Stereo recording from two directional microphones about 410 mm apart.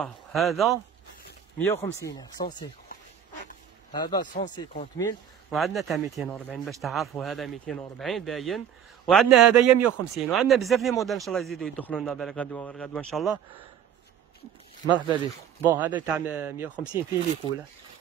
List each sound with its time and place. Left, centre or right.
0.0 s speech: centre
1.8 s speech: centre
3.9 s speech: centre
15.0 s speech: centre